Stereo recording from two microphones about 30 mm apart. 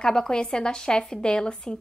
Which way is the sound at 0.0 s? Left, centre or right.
Left.